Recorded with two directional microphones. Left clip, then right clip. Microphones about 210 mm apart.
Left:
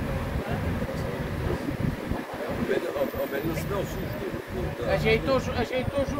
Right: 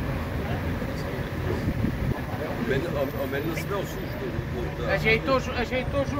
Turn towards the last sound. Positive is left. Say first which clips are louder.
# right 1 dB
turn(degrees=40)  # may be behind; listen again after turning